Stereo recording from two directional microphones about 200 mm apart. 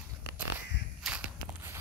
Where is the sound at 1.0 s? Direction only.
5° right (ahead or behind).